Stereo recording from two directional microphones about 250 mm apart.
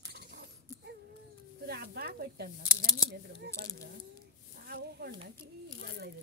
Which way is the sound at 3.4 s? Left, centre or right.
Right.